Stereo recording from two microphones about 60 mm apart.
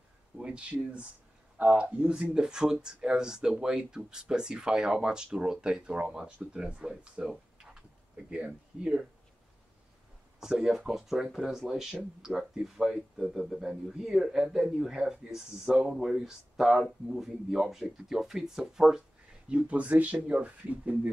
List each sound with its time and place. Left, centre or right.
0.4 s speech: centre
8.3 s speech: centre
10.4 s speech: centre
19.5 s speech: right